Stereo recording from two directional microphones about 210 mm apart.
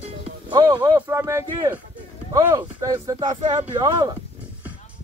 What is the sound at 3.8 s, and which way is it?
Speech, 20° right (ahead or behind).